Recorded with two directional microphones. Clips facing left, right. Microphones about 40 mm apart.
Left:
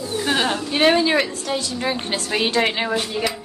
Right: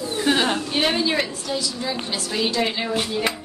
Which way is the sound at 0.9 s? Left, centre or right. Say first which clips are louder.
Left 5 dB; left.